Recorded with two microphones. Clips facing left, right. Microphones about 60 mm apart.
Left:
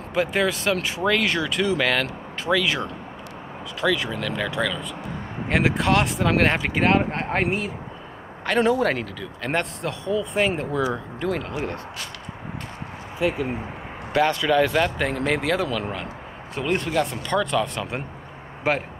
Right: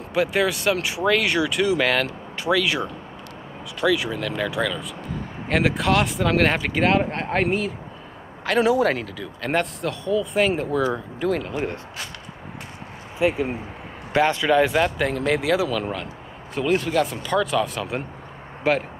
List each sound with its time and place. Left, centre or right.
0.1 s speech: centre
8.5 s speech: centre
13.2 s speech: right
14.8 s speech: centre